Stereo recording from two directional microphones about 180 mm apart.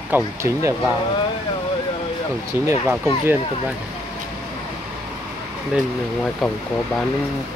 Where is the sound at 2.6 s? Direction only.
15° right (ahead or behind).